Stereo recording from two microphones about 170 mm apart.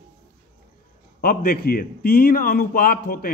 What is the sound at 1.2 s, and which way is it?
A man's voice, 60° left (ahead or behind).